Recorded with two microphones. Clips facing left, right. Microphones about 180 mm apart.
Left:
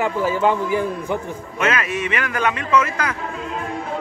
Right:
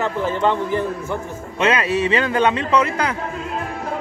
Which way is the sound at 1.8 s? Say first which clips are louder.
Right 5 dB; 30° right (ahead or behind).